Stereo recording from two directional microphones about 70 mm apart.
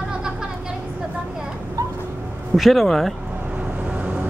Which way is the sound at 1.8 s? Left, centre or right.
Right.